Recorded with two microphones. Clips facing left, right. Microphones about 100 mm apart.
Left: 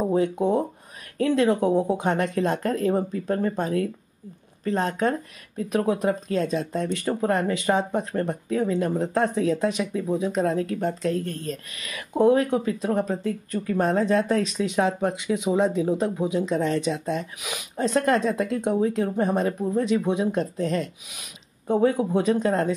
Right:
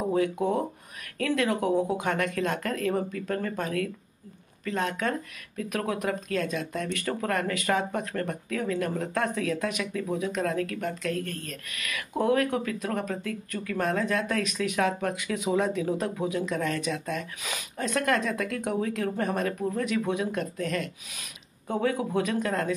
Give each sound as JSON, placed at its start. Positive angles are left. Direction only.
{"t": 0.1, "sound": "speech", "side_deg": 25}